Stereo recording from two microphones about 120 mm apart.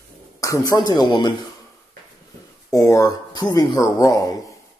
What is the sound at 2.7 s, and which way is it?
Speech, 30° left (ahead or behind).